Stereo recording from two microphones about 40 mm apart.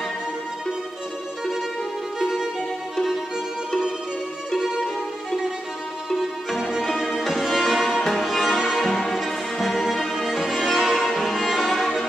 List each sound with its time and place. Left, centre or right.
2.1 s music: centre
4.6 s music: centre
6.8 s music: centre
8.8 s music: centre
10.1 s violin: centre